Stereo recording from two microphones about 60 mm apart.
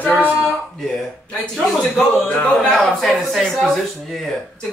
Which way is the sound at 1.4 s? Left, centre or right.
Centre.